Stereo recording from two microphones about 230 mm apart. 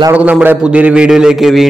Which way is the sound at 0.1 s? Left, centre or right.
Centre.